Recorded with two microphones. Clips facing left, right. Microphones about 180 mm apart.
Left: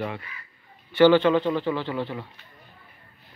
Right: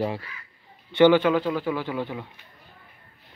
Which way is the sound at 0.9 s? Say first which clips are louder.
Even; 15° right (ahead or behind).